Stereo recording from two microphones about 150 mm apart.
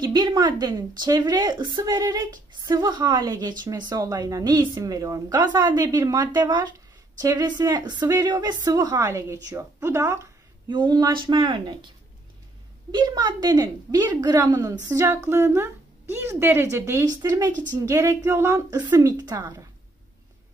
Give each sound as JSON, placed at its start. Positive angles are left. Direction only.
{"t": 0.0, "sound": "speech", "side_deg": -30}
{"t": 10.7, "sound": "speech", "side_deg": -30}
{"t": 12.9, "sound": "speech", "side_deg": -25}